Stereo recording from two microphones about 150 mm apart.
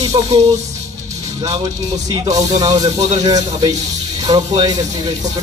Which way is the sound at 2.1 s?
25° right (ahead or behind).